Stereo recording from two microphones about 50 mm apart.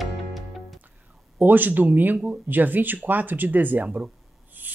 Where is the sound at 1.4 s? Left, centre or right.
Right.